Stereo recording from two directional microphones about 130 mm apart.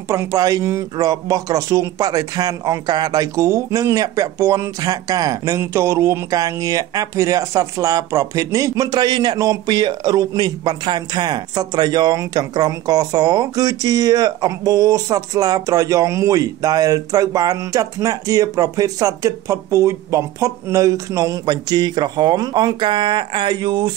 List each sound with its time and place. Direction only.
0.1 s speech: 25° right (ahead or behind)